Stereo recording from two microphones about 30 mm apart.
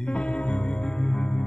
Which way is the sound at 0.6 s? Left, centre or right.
Left.